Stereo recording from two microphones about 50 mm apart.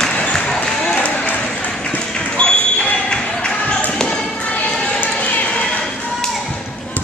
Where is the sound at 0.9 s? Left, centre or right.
Left.